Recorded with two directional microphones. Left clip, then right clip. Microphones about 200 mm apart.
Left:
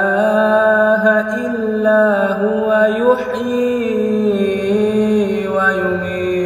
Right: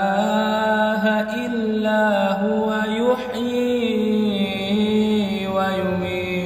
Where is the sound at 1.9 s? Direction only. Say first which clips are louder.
Left 7 dB; 20° right (ahead or behind).